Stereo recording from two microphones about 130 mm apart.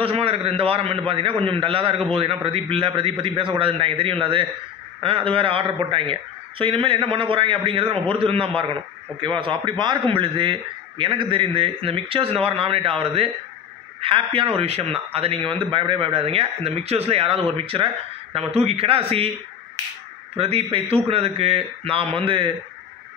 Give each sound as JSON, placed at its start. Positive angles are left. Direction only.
{"t": 0.0, "sound": "a man's voice", "side_deg": -50}
{"t": 20.3, "sound": "a man's voice", "side_deg": -50}